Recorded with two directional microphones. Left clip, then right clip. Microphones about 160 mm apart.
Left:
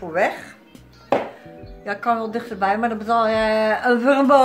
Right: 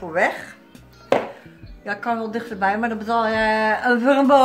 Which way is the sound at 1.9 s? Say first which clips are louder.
Left 3 dB; 15° left (ahead or behind).